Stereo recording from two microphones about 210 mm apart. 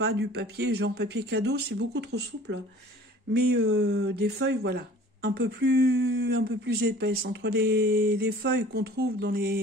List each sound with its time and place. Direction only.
0.0 s speech: 50° right (ahead or behind)
3.7 s speech: 55° right (ahead or behind)